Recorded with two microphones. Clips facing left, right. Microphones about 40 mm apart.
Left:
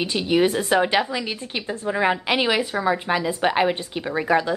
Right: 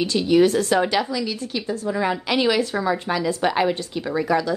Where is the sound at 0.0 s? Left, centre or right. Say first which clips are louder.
Right 3 dB; left.